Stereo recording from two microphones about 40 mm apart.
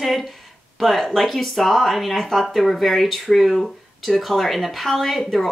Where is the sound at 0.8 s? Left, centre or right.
Centre.